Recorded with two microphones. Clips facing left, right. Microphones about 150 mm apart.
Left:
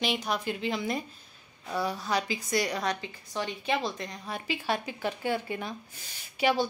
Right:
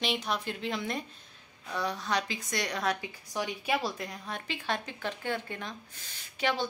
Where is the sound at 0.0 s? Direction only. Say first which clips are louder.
Left 2 dB; centre (ahead or behind).